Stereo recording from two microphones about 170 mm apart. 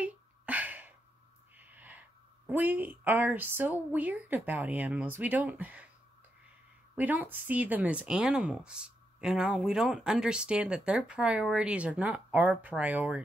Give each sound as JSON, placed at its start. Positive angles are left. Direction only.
{"t": 0.0, "sound": "a sound", "side_deg": -10}
{"t": 1.6, "sound": "speech", "side_deg": -10}
{"t": 7.0, "sound": "speech", "side_deg": -10}